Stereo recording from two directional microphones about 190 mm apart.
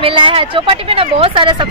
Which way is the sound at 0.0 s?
30° right (ahead or behind).